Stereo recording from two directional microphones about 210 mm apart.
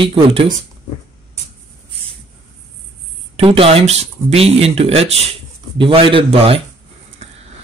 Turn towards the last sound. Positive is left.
turn(degrees=-25)  # may be behind; listen again after turning